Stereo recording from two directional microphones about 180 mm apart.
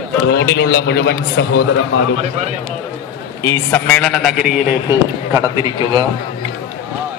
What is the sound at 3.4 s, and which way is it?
A man's voice, 15° left (ahead or behind).